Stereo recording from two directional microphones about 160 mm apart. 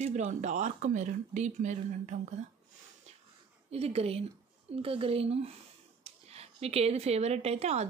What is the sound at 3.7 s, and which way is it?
A woman's voice, 40° right (ahead or behind).